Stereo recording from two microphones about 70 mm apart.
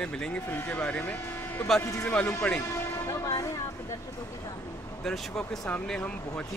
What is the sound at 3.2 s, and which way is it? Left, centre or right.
Music, left.